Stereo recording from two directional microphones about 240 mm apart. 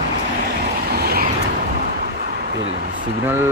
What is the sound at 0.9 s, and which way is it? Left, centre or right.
Vehicle, right.